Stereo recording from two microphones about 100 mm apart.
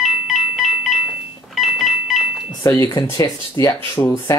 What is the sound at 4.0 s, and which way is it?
Speech, 20° left (ahead or behind).